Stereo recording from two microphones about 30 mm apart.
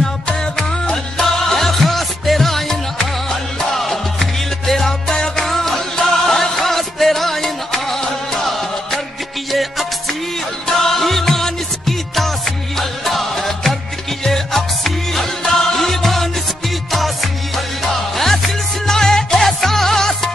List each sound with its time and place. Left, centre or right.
0.6 s music: left
1.1 s music: centre